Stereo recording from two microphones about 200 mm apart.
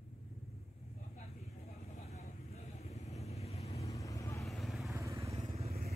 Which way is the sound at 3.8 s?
15° left (ahead or behind).